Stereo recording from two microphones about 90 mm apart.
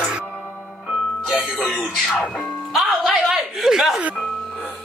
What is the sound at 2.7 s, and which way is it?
Speech, centre (ahead or behind).